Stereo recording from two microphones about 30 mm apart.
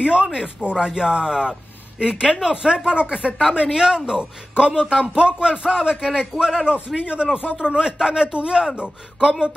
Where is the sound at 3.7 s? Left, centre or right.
Right.